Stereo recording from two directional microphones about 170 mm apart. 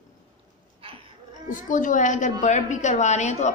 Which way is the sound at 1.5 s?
50° left (ahead or behind).